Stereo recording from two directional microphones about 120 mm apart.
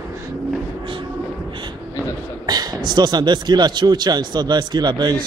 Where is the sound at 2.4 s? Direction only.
35° right (ahead or behind).